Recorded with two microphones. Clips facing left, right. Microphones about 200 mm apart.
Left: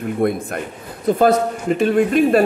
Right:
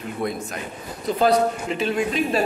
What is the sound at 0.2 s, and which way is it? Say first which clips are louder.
A man's voice: left 7 dB; 55° left (ahead or behind).